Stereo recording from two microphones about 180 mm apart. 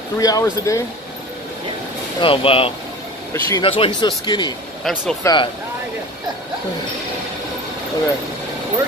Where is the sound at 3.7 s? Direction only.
30° left (ahead or behind).